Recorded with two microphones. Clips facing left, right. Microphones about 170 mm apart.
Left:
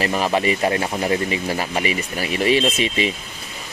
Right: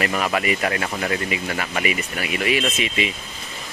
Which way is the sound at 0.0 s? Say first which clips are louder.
Left 3 dB; 30° left (ahead or behind).